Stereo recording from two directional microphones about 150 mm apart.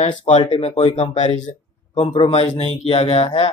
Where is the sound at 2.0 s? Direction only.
40° left (ahead or behind).